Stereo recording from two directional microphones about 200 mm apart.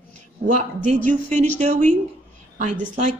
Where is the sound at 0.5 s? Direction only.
40° right (ahead or behind).